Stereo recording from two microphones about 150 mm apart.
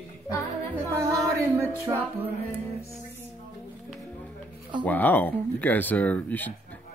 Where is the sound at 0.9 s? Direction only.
20° right (ahead or behind).